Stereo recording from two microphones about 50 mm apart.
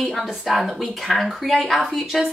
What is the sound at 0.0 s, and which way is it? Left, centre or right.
A woman's voice, centre.